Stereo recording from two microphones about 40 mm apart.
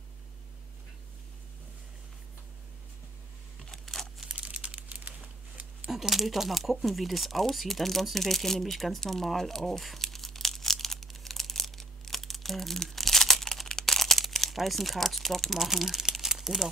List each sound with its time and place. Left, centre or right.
3.7 s crumpling: centre
4.3 s crumpling: right
4.7 s crumpling: right
5.9 s speech: centre
9.0 s tearing: centre
13.7 s crumpling: centre
13.9 s crumpling: centre
14.3 s speech: centre
15.6 s crumpling: centre